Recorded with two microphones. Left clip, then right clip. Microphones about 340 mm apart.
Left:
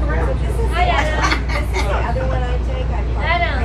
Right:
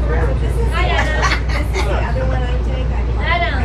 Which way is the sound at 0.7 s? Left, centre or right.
Left.